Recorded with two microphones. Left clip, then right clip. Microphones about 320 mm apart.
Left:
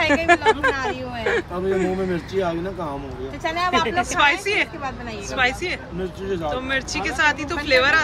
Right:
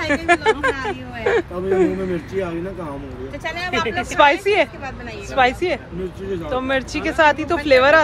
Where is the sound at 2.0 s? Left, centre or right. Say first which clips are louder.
Even; left.